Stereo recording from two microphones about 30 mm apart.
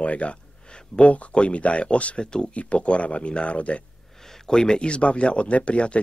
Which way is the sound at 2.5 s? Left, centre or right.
Left.